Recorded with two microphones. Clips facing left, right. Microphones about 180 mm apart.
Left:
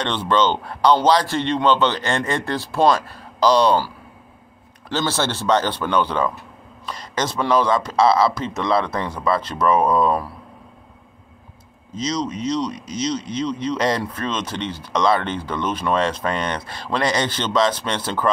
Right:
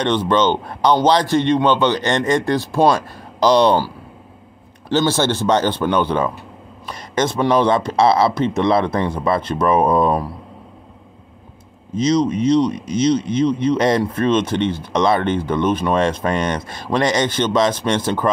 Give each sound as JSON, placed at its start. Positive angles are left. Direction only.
{"t": 0.0, "sound": "a man's voice", "side_deg": -15}
{"t": 7.3, "sound": "speech", "side_deg": -20}
{"t": 11.9, "sound": "speech", "side_deg": -55}
{"t": 13.7, "sound": "speech", "side_deg": -20}
{"t": 14.5, "sound": "speech", "side_deg": -55}
{"t": 14.9, "sound": "speech", "side_deg": -20}